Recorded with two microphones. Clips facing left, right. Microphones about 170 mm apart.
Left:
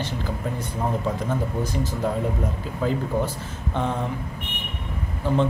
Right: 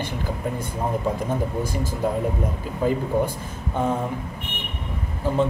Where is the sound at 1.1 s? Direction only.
10° right (ahead or behind).